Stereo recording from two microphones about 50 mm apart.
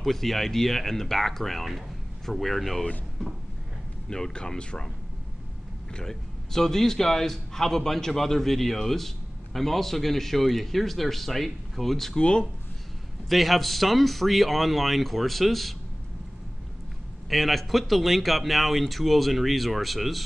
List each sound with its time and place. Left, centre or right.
0.0 s a man's voice: centre
4.1 s speech: centre
5.9 s a man's voice: centre
12.2 s speech: centre
13.3 s a man's voice: centre
17.3 s a man's voice: centre